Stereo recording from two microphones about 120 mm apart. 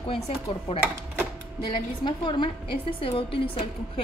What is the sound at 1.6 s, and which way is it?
A woman's voice, 40° left (ahead or behind).